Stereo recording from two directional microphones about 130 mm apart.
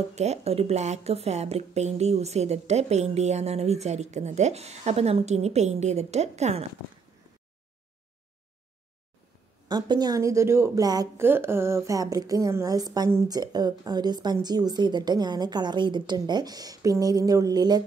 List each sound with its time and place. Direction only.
0.1 s speech: 60° right (ahead or behind)
9.7 s a woman's voice: 35° right (ahead or behind)
11.2 s a woman's voice: 20° right (ahead or behind)